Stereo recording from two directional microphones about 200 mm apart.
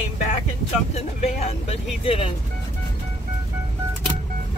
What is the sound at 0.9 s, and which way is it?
Speech, 30° left (ahead or behind).